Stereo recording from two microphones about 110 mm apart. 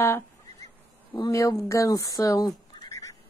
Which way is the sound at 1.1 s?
30° left (ahead or behind).